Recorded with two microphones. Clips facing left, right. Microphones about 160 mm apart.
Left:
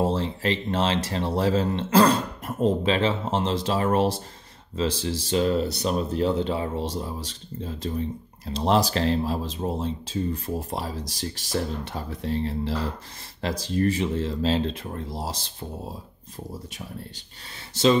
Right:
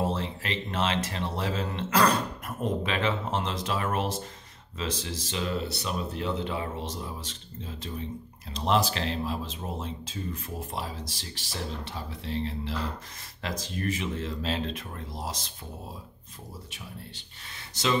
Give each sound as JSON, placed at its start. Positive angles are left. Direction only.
{"t": 0.0, "sound": "speech", "side_deg": 35}
{"t": 17.8, "sound": "speech", "side_deg": 30}